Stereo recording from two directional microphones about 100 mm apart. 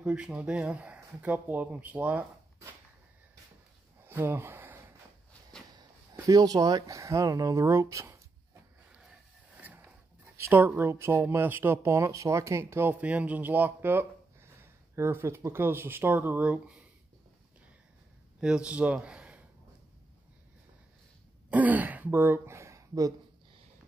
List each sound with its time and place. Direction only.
0.0 s speech: 5° right (ahead or behind)
4.0 s a sound: 20° right (ahead or behind)
6.2 s speech: 40° right (ahead or behind)
9.6 s mechanisms: 15° right (ahead or behind)
10.3 s speech: 25° right (ahead or behind)
13.0 s speech: 15° right (ahead or behind)
18.4 s a man's voice: 10° right (ahead or behind)
21.5 s speech: 15° right (ahead or behind); by 23.1 s 35° right (ahead or behind)